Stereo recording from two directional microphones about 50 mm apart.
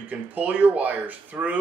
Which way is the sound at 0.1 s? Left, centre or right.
Right.